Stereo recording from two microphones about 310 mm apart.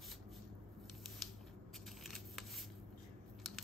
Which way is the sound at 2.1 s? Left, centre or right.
Centre.